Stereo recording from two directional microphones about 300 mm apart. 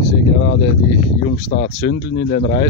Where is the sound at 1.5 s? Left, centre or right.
Left.